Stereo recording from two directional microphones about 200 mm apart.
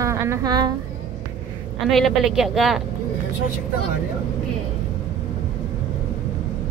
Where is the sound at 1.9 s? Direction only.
Centre (ahead or behind).